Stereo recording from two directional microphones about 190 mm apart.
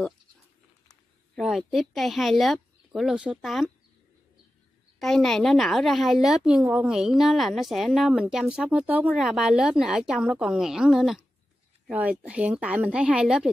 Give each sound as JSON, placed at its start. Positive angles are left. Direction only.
{"t": 1.3, "sound": "a woman's voice", "side_deg": 0}
{"t": 4.9, "sound": "a woman's voice", "side_deg": 0}